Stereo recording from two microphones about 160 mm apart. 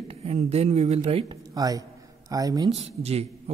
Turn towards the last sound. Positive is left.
turn(degrees=-40)  # may be behind; listen again after turning